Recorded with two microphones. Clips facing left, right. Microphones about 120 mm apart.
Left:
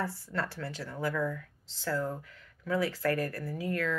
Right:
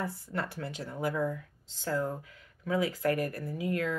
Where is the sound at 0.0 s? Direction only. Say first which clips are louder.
Left 1 dB; 20° right (ahead or behind).